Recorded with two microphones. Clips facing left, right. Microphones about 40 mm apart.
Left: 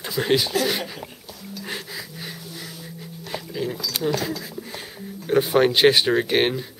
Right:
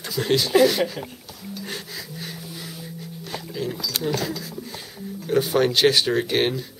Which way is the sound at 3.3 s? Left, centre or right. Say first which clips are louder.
Left 1 dB; centre.